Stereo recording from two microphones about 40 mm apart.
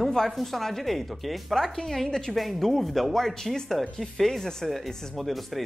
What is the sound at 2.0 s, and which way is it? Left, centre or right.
Speech, centre.